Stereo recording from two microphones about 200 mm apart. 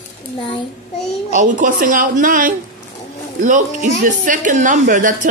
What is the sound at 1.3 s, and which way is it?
A woman's voice, 40° right (ahead or behind).